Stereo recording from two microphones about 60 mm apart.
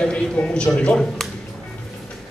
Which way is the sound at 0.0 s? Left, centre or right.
Centre.